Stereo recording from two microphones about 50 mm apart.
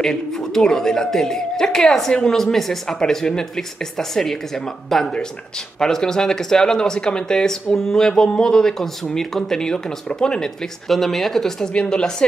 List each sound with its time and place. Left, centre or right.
0.0 s speech: centre
10.9 s speech: centre